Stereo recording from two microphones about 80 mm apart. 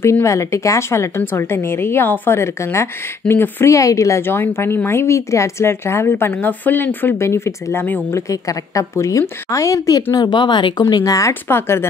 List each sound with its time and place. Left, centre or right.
0.0 s speech: left
3.7 s speech: left
4.2 s a woman's voice: left
10.1 s speech: left
11.4 s speech: left